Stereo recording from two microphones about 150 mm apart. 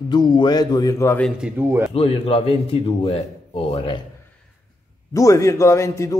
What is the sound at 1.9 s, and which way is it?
A man's voice, 40° left (ahead or behind).